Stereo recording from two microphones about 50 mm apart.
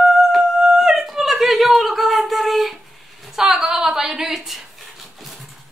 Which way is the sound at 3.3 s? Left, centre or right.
Centre.